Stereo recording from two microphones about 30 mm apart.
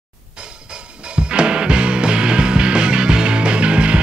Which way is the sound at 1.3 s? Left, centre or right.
Right.